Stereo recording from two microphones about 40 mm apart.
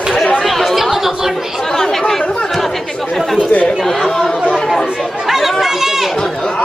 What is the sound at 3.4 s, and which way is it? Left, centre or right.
Chatter, left.